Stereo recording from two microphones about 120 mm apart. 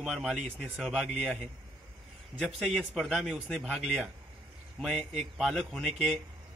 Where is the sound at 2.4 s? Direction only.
Centre (ahead or behind).